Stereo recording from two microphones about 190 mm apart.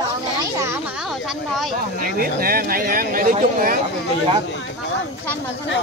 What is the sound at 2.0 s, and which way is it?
Speech, 50° right (ahead or behind).